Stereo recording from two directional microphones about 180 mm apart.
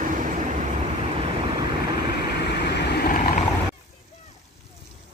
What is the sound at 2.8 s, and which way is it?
Vehicle, 65° left (ahead or behind).